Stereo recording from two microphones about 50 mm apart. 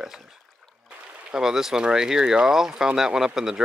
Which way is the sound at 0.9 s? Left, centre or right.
Right.